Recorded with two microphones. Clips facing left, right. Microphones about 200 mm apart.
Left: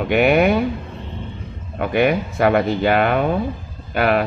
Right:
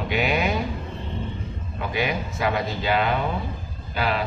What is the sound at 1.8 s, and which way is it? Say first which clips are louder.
Speech: left 9 dB; 60° left (ahead or behind).